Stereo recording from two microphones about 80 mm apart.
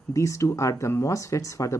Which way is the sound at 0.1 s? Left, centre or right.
Left.